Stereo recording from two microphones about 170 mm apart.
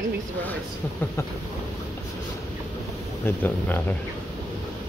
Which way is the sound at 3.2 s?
10° left (ahead or behind).